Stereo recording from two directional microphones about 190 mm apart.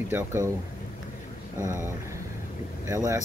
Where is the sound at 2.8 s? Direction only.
15° right (ahead or behind).